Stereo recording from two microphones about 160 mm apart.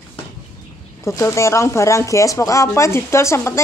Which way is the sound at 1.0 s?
20° left (ahead or behind).